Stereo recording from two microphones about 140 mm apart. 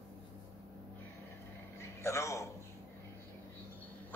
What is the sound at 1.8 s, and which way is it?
Speech, 20° left (ahead or behind).